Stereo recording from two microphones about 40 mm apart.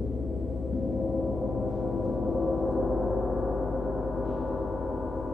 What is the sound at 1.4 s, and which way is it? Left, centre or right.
Gong, centre.